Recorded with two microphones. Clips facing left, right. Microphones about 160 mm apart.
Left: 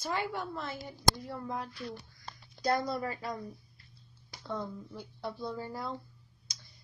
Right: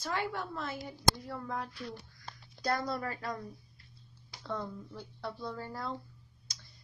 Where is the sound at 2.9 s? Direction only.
10° left (ahead or behind).